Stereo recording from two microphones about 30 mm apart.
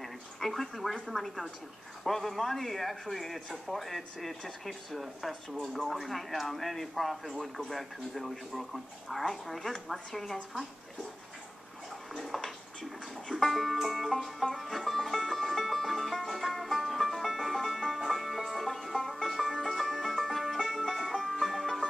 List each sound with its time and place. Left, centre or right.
0.0 s a sound: centre
1.1 s speech: centre
5.7 s speech: centre
5.9 s speech: centre
9.8 s speech: centre
12.2 s a sound: centre
13.3 s music: centre
21.3 s music: centre